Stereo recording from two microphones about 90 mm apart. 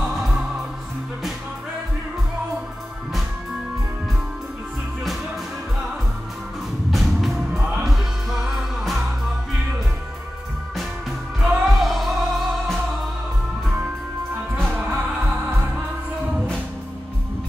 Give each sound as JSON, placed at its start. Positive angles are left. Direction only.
{"t": 0.0, "sound": "music", "side_deg": -5}
{"t": 6.9, "sound": "music", "side_deg": 0}
{"t": 11.4, "sound": "music", "side_deg": 0}
{"t": 14.9, "sound": "music", "side_deg": -20}